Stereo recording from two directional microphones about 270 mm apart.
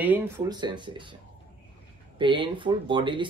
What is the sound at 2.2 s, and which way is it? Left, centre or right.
Speech, centre.